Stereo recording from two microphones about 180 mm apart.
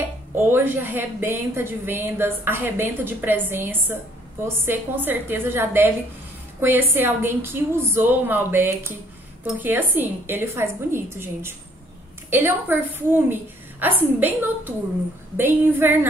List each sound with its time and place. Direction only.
0.4 s a woman's voice: 10° right (ahead or behind)